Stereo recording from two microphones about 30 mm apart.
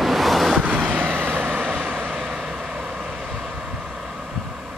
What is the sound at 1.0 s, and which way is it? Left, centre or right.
Vehicle, centre.